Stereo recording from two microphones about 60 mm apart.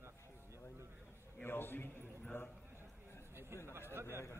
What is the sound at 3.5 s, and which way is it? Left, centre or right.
Speech, right.